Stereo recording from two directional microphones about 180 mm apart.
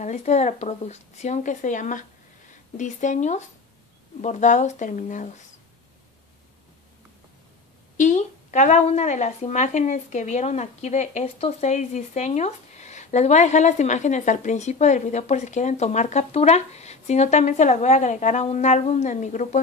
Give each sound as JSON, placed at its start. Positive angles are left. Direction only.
{"t": 0.0, "sound": "a woman's voice", "side_deg": 40}
{"t": 8.0, "sound": "a woman's voice", "side_deg": 40}